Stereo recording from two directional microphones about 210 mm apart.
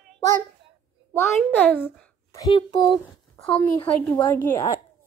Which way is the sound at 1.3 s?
5° left (ahead or behind).